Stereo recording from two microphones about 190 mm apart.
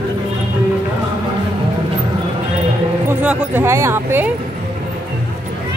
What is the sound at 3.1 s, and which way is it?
Speech, 10° right (ahead or behind).